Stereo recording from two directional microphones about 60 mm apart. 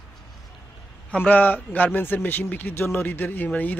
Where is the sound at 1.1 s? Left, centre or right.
Left.